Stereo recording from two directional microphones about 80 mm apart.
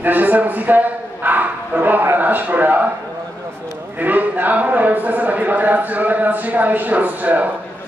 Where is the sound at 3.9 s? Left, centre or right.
Right.